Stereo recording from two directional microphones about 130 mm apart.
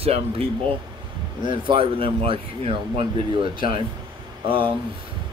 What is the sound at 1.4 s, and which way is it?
Speech, 40° right (ahead or behind).